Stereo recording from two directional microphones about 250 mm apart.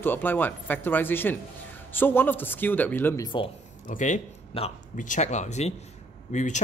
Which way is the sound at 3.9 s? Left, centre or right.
Left.